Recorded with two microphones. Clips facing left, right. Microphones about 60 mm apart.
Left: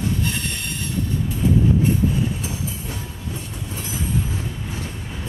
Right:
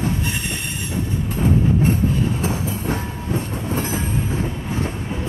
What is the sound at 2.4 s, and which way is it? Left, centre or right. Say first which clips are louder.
Train: right 6 dB; right.